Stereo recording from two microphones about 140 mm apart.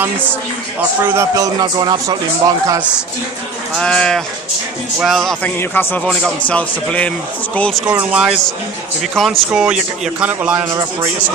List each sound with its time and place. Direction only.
0.0 s a man's voice: 15° right (ahead or behind); by 2.1 s 30° right (ahead or behind)
3.7 s a man's voice: 5° left (ahead or behind)
5.6 s speech: 15° left (ahead or behind)
7.8 s a man's voice: 10° right (ahead or behind)
10.6 s a man's voice: 20° right (ahead or behind)